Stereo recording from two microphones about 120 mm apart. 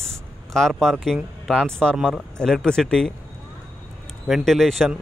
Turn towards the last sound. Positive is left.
turn(degrees=5)  # may be behind; listen again after turning